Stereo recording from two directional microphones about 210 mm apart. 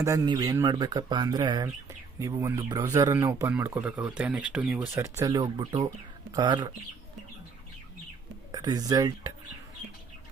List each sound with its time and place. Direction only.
0.0 s speech: 15° right (ahead or behind)
8.5 s speech: 20° right (ahead or behind)